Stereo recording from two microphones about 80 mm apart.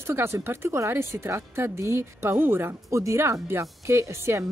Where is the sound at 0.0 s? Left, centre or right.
Right.